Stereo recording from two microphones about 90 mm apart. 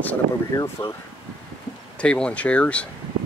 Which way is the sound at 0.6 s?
40° left (ahead or behind).